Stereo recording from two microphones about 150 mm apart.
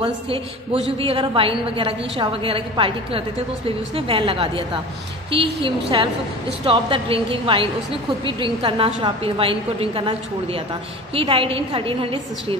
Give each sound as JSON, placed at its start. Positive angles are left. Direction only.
{"t": 0.9, "sound": "a woman's voice", "side_deg": -35}